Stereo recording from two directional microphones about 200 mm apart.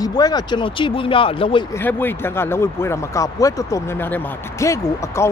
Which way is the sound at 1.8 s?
10° left (ahead or behind).